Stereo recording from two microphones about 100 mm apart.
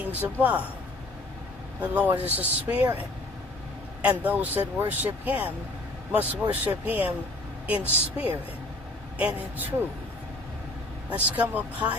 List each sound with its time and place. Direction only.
0.0 s speech: 15° right (ahead or behind)
1.8 s speech: 15° right (ahead or behind)
11.1 s speech: 15° right (ahead or behind)